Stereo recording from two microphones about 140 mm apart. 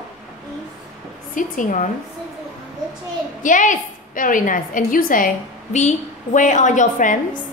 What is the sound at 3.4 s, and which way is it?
A woman's voice, 65° left (ahead or behind).